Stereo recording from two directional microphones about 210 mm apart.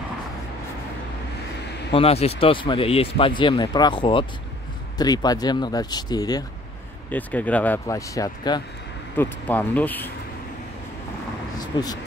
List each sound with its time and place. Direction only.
1.9 s speech: 25° left (ahead or behind)
7.1 s speech: 10° left (ahead or behind)
11.5 s vehicle: 20° left (ahead or behind)